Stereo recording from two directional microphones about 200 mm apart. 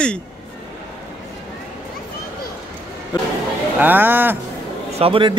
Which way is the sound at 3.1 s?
20° left (ahead or behind).